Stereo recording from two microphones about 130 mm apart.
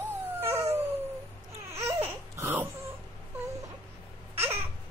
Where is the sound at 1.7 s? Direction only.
20° right (ahead or behind).